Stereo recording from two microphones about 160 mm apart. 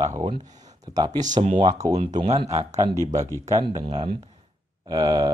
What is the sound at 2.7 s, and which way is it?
Speech, 20° right (ahead or behind).